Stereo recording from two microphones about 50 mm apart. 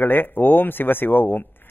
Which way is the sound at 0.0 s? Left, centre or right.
Left.